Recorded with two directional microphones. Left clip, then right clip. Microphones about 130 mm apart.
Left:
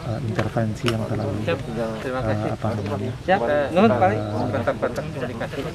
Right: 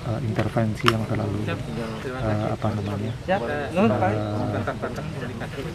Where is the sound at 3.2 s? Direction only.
30° left (ahead or behind).